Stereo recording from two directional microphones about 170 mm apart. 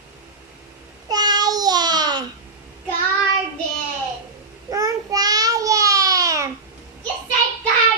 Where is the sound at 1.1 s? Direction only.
25° right (ahead or behind).